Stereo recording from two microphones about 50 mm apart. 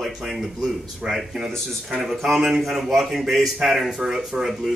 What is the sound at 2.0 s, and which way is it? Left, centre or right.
A man's voice, centre.